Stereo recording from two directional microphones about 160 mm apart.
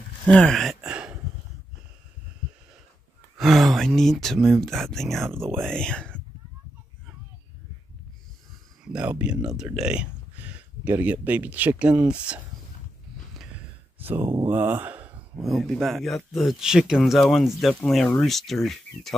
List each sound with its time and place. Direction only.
0.3 s a sound: 5° left (ahead or behind)
3.3 s speech: centre (ahead or behind)
5.3 s speech: 15° right (ahead or behind)
5.6 s speech: 5° left (ahead or behind)
8.8 s speech: 5° right (ahead or behind)
13.9 s a sound: 15° right (ahead or behind)
14.4 s speech: 10° right (ahead or behind)
15.4 s speech: centre (ahead or behind)